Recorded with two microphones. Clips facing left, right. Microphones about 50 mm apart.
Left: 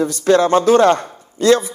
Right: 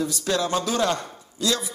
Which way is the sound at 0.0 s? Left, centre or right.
Left.